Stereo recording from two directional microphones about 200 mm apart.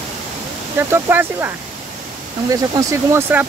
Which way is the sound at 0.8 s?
10° right (ahead or behind).